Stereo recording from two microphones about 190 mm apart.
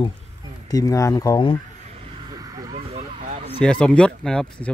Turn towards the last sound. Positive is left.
turn(degrees=5)  # may be behind; listen again after turning